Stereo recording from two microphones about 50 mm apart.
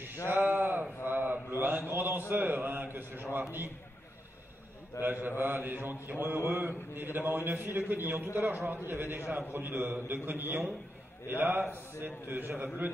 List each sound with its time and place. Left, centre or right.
0.3 s a sound: right
1.5 s a man's voice: right
5.0 s a man's voice: right